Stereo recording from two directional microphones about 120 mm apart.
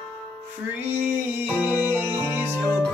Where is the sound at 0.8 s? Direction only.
15° right (ahead or behind).